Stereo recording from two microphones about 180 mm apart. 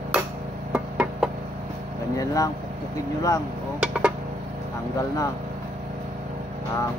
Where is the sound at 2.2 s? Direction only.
20° left (ahead or behind).